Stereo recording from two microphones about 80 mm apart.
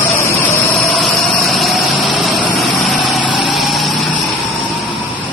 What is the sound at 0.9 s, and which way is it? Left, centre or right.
Vehicle, centre.